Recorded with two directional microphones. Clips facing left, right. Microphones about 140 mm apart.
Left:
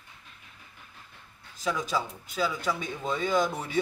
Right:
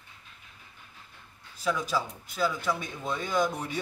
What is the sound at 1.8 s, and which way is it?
Speech, centre (ahead or behind).